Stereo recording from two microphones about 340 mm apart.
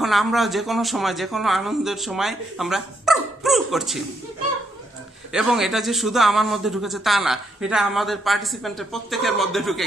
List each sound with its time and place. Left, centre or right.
0.0 s a man's voice: centre
5.3 s a man's voice: centre